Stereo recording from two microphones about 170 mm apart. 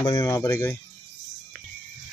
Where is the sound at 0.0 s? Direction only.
20° left (ahead or behind).